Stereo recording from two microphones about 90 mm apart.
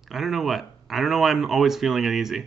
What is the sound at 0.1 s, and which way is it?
Speech, 5° right (ahead or behind).